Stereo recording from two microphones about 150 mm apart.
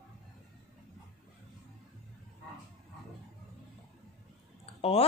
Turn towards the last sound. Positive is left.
turn(degrees=40)  # may be behind; listen again after turning